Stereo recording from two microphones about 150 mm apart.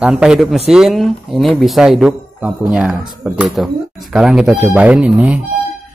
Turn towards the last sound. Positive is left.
turn(degrees=-10)  # may be behind; listen again after turning